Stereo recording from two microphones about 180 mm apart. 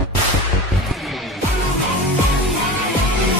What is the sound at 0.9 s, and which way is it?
Music, centre (ahead or behind).